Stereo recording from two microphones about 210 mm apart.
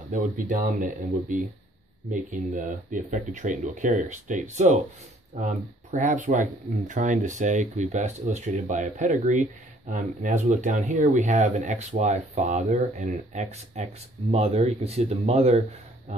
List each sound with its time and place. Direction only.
0.1 s speech: 40° right (ahead or behind)